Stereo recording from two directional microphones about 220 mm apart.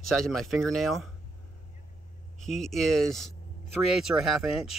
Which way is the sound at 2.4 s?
Centre (ahead or behind).